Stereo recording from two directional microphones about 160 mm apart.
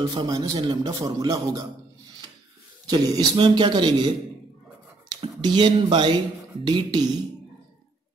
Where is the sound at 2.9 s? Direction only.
30° right (ahead or behind).